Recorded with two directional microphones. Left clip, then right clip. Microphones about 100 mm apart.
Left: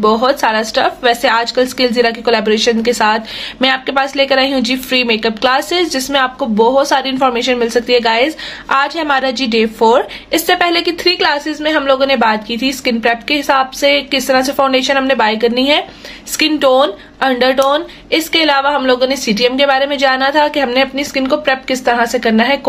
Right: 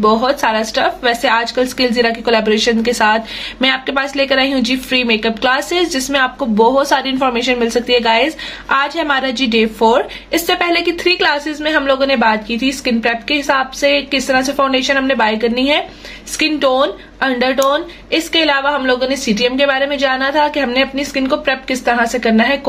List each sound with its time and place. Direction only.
0.0 s a woman's voice: 45° left (ahead or behind)
6.4 s speech: 20° left (ahead or behind); by 22.6 s 50° left (ahead or behind)